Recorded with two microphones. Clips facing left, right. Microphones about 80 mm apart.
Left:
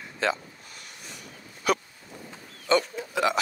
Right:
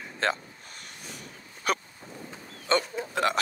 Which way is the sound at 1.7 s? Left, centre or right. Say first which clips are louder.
Left 3 dB; right.